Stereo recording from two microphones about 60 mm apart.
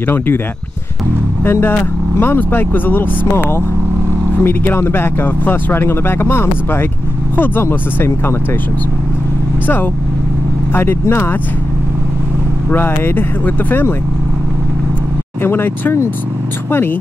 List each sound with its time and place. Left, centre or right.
1.4 s speech: left
10.7 s speech: left
12.7 s speech: left
15.4 s speech: left